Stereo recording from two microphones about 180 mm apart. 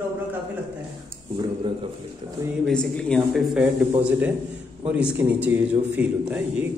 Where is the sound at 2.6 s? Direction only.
5° left (ahead or behind).